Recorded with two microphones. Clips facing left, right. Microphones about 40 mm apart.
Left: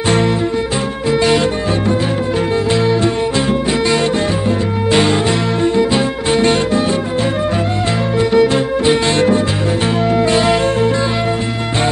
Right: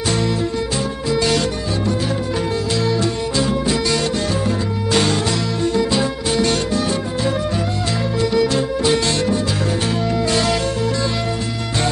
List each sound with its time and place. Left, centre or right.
1.1 s music: left
2.8 s music: left
8.2 s music: left